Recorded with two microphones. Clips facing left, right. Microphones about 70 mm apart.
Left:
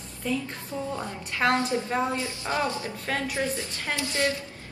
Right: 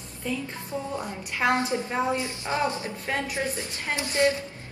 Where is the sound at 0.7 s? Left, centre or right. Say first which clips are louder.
Even; right.